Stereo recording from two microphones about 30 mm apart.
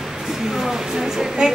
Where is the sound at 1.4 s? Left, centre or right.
Right.